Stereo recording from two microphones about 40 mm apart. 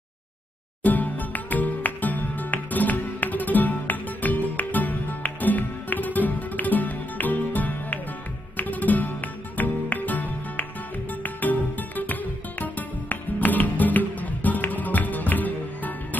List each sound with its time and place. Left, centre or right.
0.8 s music: left